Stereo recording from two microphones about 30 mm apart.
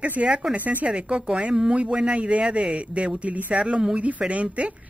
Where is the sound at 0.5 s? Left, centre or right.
Right.